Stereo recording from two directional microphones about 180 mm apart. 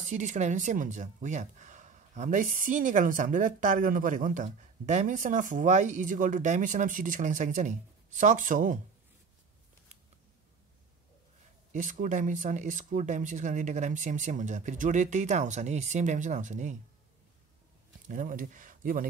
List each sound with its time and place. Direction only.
0.0 s speech: 45° right (ahead or behind)
11.7 s speech: 45° right (ahead or behind)
18.0 s speech: 45° right (ahead or behind)